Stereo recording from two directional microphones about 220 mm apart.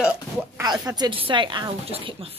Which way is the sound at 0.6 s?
15° right (ahead or behind).